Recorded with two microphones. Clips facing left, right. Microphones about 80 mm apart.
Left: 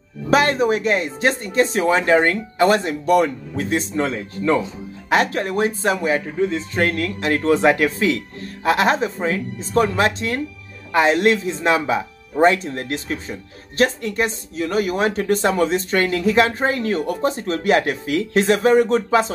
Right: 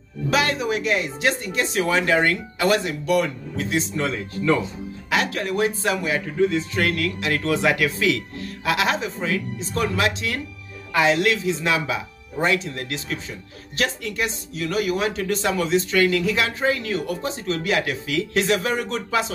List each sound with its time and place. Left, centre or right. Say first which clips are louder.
0.3 s speech: left 6 dB; left
3.9 s speech: left 3 dB; left
5.1 s speech: left 4 dB; left